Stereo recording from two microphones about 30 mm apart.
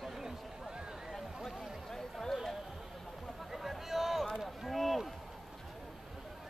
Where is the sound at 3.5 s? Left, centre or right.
Centre.